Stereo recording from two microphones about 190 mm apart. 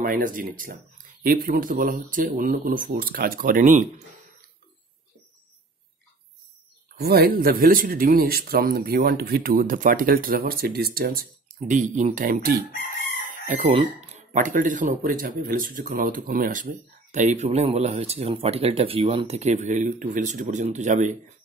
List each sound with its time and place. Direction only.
0.0 s speech: 45° right (ahead or behind)
7.0 s speech: 55° right (ahead or behind); by 21.2 s 40° right (ahead or behind)